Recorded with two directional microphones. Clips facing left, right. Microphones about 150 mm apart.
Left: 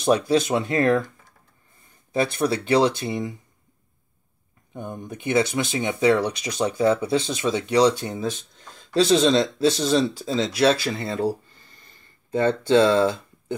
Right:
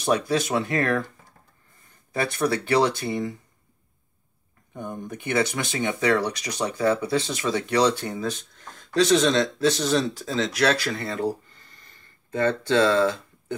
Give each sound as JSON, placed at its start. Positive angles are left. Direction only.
{"t": 0.0, "sound": "speech", "side_deg": 25}
{"t": 2.1, "sound": "speech", "side_deg": 20}
{"t": 4.7, "sound": "speech", "side_deg": 20}
{"t": 12.6, "sound": "speech", "side_deg": 25}
{"t": 12.9, "sound": "speech", "side_deg": 10}